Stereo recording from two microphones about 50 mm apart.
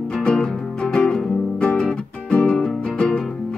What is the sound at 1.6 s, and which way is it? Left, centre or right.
Music, left.